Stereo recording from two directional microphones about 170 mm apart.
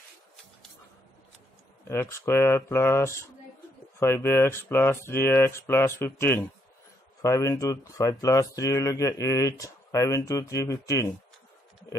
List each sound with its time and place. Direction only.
1.9 s speech: 15° left (ahead or behind)